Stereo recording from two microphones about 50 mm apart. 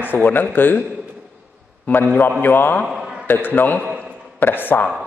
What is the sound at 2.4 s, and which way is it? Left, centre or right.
A man's voice, left.